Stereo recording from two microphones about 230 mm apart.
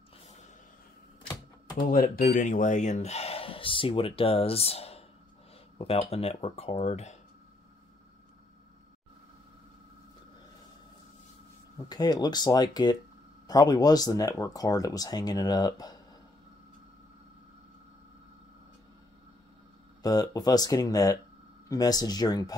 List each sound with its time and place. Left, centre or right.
1.9 s speech: left
11.9 s speech: centre
20.0 s speech: centre